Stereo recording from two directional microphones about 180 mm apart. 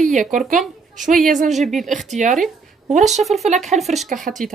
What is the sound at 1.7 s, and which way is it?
Speech, centre (ahead or behind).